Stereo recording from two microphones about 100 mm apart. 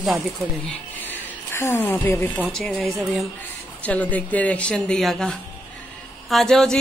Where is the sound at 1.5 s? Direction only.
25° left (ahead or behind).